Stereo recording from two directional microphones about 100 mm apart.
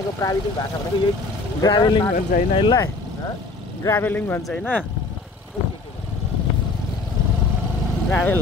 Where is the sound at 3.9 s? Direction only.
20° left (ahead or behind).